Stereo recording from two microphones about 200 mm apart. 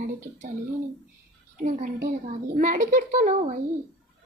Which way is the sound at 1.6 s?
45° right (ahead or behind).